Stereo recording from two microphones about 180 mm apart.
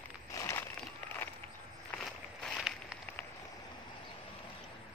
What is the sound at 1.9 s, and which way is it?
Walk, 5° left (ahead or behind).